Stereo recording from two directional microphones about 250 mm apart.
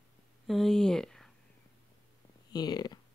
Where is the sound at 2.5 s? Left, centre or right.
Centre.